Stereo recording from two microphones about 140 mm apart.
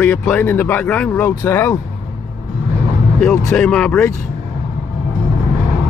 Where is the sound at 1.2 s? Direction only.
20° left (ahead or behind).